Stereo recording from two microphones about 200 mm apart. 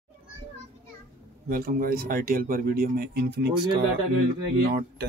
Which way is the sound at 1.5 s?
45° right (ahead or behind).